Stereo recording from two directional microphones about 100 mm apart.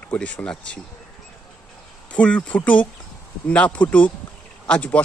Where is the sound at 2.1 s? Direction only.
10° left (ahead or behind).